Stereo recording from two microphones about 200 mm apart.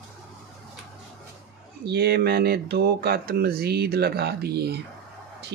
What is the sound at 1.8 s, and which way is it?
Speech, 50° right (ahead or behind).